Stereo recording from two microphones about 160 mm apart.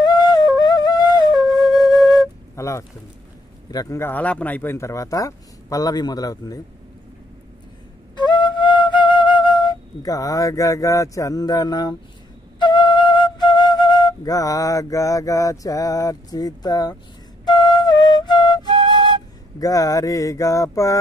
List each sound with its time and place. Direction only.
0.0 s flute: 25° left (ahead or behind)
3.7 s speech: 20° left (ahead or behind)
8.2 s flute: 30° left (ahead or behind)
19.6 s speech: 20° left (ahead or behind)